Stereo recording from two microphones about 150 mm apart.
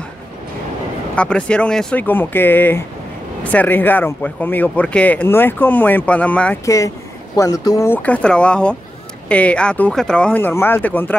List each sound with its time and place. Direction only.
1.1 s speech: 5° left (ahead or behind)
6.6 s speech: 20° left (ahead or behind)
7.9 s speech: 10° left (ahead or behind)